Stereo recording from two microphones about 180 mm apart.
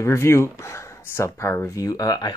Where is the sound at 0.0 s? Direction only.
15° left (ahead or behind).